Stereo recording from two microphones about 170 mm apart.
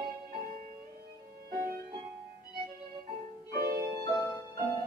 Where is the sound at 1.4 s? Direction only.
65° right (ahead or behind).